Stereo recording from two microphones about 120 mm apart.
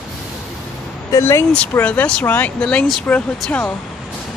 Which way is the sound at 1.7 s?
15° left (ahead or behind).